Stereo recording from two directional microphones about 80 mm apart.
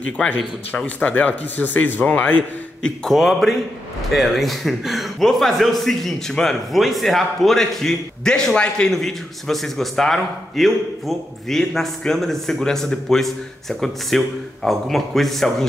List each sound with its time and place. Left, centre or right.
0.2 s speech: centre
2.8 s a man's voice: centre